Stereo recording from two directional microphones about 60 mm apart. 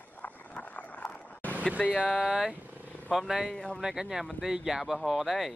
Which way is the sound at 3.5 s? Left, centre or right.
Centre.